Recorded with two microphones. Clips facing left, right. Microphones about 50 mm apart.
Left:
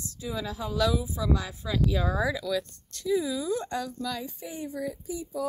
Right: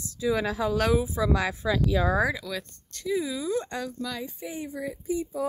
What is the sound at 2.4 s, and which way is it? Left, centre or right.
Speech, right.